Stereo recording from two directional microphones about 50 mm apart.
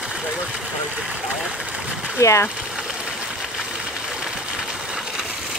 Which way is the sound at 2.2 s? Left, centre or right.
Left.